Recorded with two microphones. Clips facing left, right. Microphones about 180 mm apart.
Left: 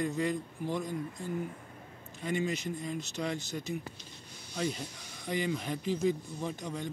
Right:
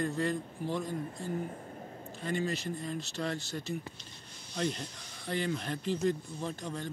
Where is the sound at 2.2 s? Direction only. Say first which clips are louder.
Left 1 dB; 15° left (ahead or behind).